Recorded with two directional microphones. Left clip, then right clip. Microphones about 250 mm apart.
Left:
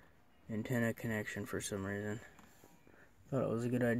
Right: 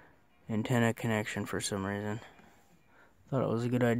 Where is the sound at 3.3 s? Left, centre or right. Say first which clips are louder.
Right 5 dB; right.